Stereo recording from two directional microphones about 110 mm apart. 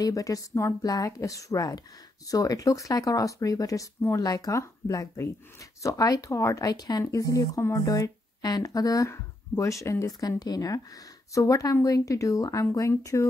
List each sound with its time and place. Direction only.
0.0 s speech: 30° left (ahead or behind)